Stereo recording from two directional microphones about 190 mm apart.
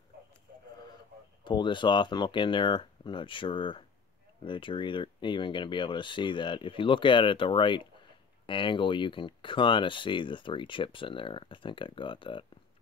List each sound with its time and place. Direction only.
1.4 s speech: 25° left (ahead or behind)